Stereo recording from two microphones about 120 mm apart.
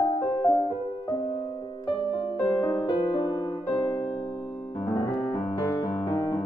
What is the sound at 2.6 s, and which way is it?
Music, 40° left (ahead or behind).